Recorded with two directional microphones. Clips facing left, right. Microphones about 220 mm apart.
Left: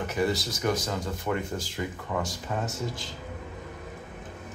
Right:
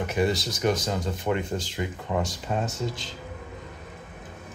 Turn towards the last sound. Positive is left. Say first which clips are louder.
# right 3 dB
turn(degrees=-25)  # may be behind; listen again after turning